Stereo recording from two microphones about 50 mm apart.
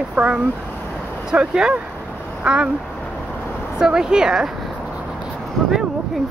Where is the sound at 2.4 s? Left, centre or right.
Right.